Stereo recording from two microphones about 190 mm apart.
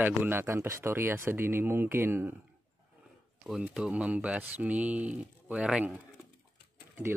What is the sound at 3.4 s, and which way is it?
Speech, 5° right (ahead or behind).